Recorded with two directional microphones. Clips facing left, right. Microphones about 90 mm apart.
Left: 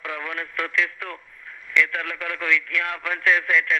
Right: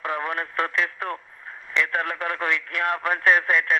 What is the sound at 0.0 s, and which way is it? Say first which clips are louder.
Radio: right 4 dB; 40° right (ahead or behind).